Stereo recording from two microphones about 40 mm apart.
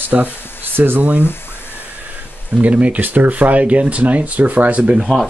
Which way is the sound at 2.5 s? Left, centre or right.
Right.